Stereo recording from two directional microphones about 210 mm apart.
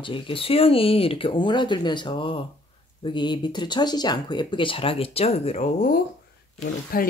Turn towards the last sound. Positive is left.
turn(degrees=45)  # may be behind; listen again after turning